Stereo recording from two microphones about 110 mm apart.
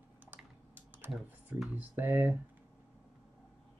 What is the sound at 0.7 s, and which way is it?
Typing, 15° right (ahead or behind).